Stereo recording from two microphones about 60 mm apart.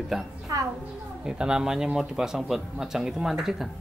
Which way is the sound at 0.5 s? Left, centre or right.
Right.